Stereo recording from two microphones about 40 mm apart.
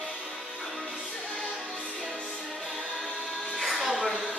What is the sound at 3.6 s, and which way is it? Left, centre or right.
Music, centre.